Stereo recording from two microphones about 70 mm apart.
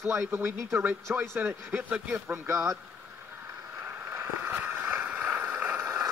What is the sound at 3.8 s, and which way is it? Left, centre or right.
Boat, right.